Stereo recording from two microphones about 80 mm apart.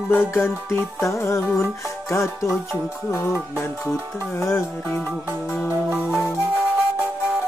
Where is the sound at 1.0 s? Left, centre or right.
Left.